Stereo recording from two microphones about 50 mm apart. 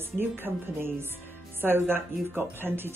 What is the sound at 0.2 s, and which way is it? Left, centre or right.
Speech, right.